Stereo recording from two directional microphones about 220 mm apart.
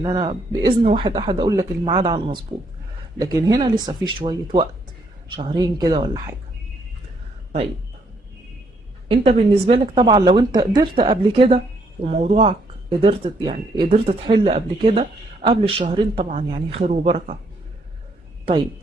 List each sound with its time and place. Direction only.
0.0 s speech: 20° right (ahead or behind)
9.1 s speech: 25° right (ahead or behind)